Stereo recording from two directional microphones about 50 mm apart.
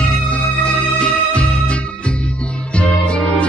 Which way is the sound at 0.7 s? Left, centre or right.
Left.